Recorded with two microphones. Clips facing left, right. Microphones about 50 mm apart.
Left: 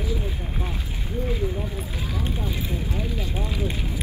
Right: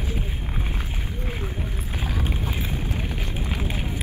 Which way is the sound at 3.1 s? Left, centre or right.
Right.